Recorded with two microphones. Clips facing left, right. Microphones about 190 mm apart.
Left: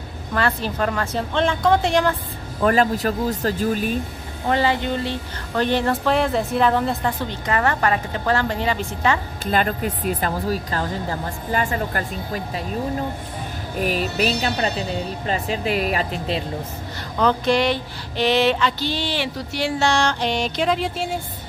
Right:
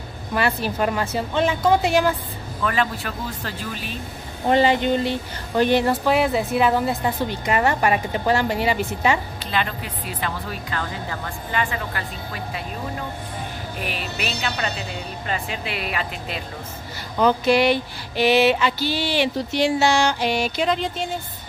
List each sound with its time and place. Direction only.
0.3 s a woman's voice: 10° right (ahead or behind)
2.6 s speech: 40° left (ahead or behind)
4.5 s a woman's voice: 20° right (ahead or behind)
9.4 s speech: 45° left (ahead or behind)
13.7 s speech: 40° left (ahead or behind)
17.2 s a woman's voice: 10° right (ahead or behind)
19.8 s music: 5° right (ahead or behind)